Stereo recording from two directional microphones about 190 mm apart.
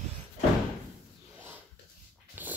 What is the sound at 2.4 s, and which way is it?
Dog, 10° right (ahead or behind).